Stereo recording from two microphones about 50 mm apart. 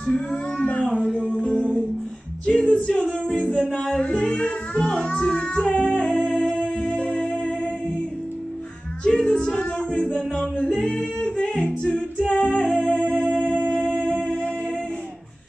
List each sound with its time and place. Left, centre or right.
0.3 s a sound: left
0.9 s music: centre
1.4 s music: centre
2.4 s singing: centre
9.0 s a sound: centre
10.6 s singing: centre
11.5 s music: centre